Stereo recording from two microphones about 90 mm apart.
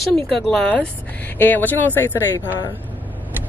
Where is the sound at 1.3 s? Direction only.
20° left (ahead or behind).